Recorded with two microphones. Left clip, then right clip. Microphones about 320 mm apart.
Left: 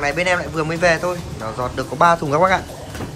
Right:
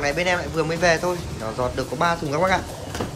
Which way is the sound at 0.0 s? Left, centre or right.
Centre.